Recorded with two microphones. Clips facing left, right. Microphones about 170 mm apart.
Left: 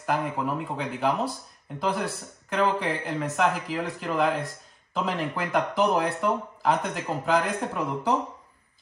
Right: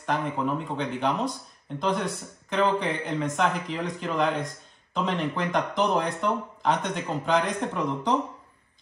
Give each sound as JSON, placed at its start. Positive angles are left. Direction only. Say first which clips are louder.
{"t": 0.0, "sound": "speech", "louder": "even", "side_deg": 5}